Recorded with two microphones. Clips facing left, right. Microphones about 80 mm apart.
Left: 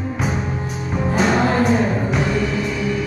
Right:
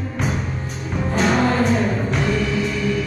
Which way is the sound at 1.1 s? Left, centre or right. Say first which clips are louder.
Left 1 dB; centre.